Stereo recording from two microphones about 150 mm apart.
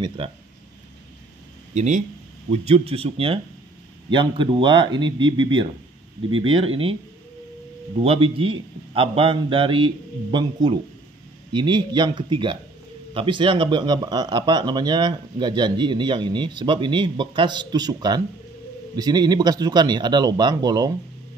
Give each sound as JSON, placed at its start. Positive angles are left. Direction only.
{"t": 0.2, "sound": "speech", "side_deg": -35}
{"t": 1.7, "sound": "speech", "side_deg": -50}
{"t": 8.0, "sound": "speech", "side_deg": -35}